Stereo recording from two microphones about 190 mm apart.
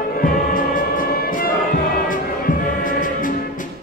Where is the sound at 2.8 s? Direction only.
45° left (ahead or behind).